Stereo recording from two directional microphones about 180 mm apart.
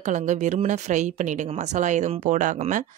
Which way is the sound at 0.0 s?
40° right (ahead or behind).